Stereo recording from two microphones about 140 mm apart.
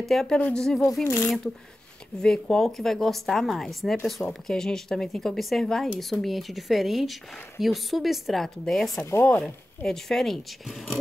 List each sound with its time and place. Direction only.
0.0 s speech: centre (ahead or behind)
1.0 s speech: 15° left (ahead or behind)
2.2 s speech: 5° left (ahead or behind)
9.0 s speech: 15° left (ahead or behind)
9.8 s speech: 5° left (ahead or behind)